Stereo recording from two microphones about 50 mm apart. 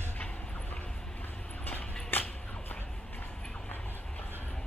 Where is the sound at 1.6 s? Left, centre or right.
Left.